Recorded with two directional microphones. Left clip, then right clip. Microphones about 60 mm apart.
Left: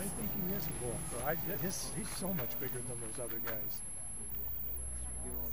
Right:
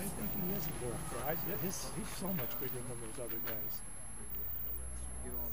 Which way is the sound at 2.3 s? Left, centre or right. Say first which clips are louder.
Even; centre.